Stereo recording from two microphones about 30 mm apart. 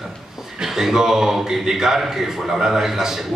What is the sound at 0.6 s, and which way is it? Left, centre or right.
A man's voice, centre.